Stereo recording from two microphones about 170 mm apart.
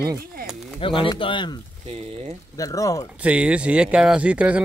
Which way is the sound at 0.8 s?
30° left (ahead or behind).